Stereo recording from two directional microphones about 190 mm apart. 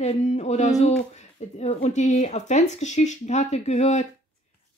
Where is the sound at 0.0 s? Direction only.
35° left (ahead or behind).